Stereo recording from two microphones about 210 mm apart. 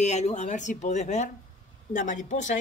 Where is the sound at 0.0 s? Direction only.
35° left (ahead or behind).